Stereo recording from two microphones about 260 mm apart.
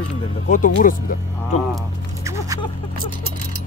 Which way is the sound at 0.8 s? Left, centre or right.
Left.